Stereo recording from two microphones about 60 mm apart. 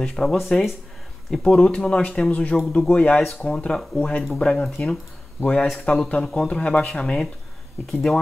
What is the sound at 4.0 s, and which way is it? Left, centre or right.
Speech, left.